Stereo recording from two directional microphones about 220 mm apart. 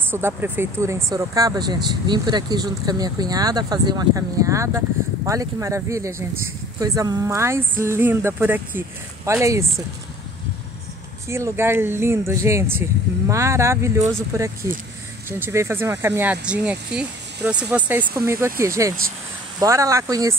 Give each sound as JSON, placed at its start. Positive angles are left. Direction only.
{"t": 0.1, "sound": "speech", "side_deg": -10}
{"t": 11.2, "sound": "speech", "side_deg": -10}